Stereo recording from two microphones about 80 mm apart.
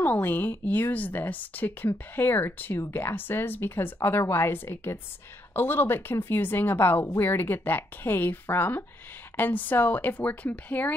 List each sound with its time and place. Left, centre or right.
0.0 s speech: left